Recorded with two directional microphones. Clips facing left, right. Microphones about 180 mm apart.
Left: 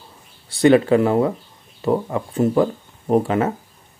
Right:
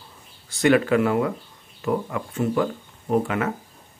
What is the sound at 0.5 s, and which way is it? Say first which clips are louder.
Speech: left 5 dB; 30° left (ahead or behind).